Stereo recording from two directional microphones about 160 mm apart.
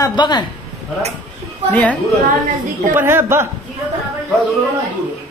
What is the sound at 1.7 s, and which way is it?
Speech, 10° left (ahead or behind).